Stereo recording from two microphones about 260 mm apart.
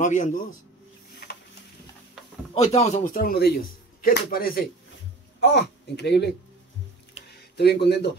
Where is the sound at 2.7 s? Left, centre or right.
Left.